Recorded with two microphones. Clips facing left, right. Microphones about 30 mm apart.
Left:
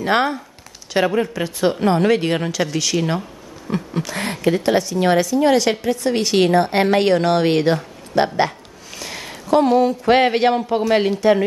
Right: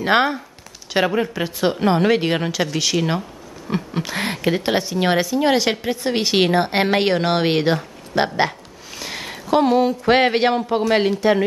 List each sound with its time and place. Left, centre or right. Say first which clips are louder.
0.0 s a woman's voice: right 1 dB; centre